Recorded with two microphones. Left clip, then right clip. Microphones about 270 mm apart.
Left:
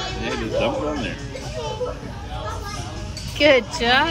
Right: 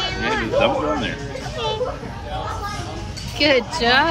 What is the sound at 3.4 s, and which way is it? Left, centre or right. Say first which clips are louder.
Speech: left 1 dB; centre.